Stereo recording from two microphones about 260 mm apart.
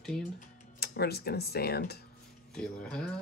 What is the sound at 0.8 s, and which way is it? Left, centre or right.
Speech, left.